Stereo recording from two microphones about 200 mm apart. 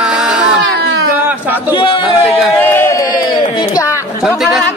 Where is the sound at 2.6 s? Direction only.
10° left (ahead or behind).